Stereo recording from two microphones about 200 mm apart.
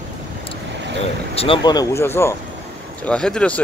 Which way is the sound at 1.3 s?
30° left (ahead or behind).